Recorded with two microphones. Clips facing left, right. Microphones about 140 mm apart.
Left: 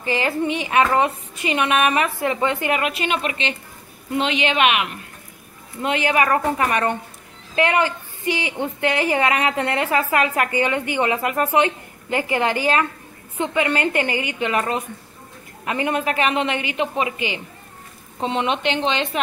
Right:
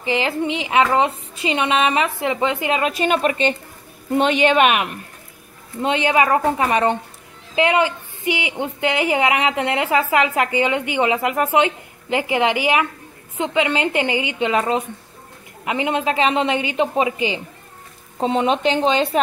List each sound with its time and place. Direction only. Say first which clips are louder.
0.0 s a woman's voice: right 1 dB; 20° right (ahead or behind)
2.9 s a woman's voice: right 5 dB; 40° right (ahead or behind)
5.8 s a woman's voice: right 2 dB; 25° right (ahead or behind)